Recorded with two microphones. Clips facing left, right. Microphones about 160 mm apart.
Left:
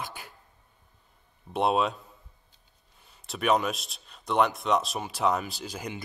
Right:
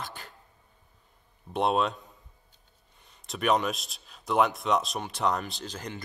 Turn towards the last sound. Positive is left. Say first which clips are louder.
# left 1 dB
turn(degrees=10)  # may be behind; listen again after turning